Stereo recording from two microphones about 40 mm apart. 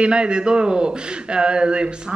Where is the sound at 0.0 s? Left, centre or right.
Right.